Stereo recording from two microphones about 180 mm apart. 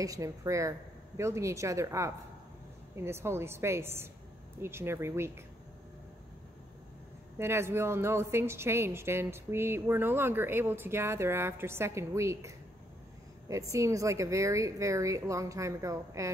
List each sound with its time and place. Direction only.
0.0 s a woman's voice: 20° right (ahead or behind)
7.3 s a woman's voice: 15° right (ahead or behind)